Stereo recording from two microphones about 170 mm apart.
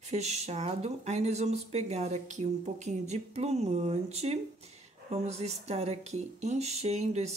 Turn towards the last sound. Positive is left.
turn(degrees=-40)  # may be behind; listen again after turning